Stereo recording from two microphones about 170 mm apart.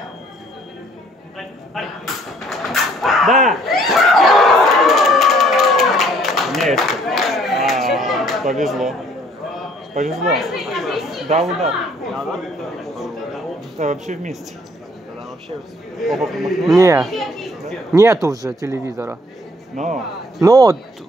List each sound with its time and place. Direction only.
1.8 s speech: centre (ahead or behind)
2.4 s a sound: centre (ahead or behind)
10.0 s speech: centre (ahead or behind)
12.1 s a sound: centre (ahead or behind)
13.7 s speech: 45° right (ahead or behind)
16.0 s speech: centre (ahead or behind)
16.7 s a child's voice: 20° right (ahead or behind)
17.0 s speech: centre (ahead or behind)
17.9 s speech: 20° right (ahead or behind)
19.8 s speech: 45° right (ahead or behind)
20.3 s speech: 20° right (ahead or behind)